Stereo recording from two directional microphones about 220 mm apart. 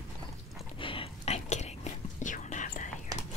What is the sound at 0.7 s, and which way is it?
Whispering, 25° left (ahead or behind).